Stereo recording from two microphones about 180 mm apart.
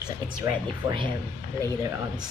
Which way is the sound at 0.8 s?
30° right (ahead or behind).